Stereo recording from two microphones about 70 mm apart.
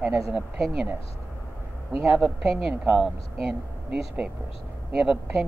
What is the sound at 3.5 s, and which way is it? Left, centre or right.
Speech, centre.